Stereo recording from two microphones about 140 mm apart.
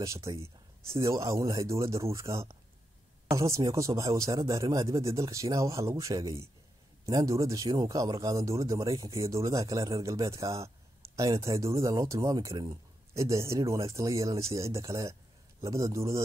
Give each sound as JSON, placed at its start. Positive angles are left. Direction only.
{"t": 0.0, "sound": "speech", "side_deg": -20}